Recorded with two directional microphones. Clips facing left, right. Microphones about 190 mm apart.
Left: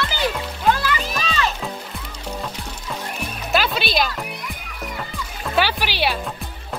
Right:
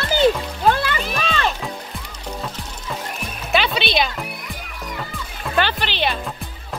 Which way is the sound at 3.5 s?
Centre (ahead or behind).